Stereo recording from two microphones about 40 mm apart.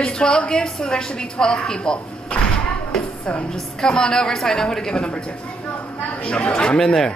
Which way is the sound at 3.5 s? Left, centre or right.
Centre.